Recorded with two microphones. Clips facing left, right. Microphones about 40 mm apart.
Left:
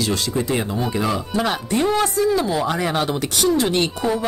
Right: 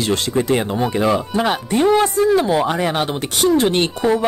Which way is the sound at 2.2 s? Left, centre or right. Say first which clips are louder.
Right 4 dB; right.